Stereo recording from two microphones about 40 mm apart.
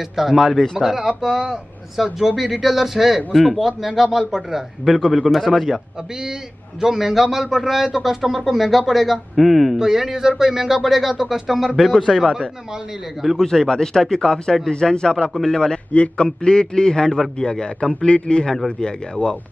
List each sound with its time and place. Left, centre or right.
0.1 s speech: centre
6.8 s speech: centre
9.8 s speech: centre
13.4 s a man's voice: centre
15.9 s a man's voice: left
16.4 s a man's voice: centre